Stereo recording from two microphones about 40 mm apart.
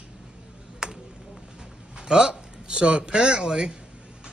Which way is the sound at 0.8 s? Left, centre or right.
Right.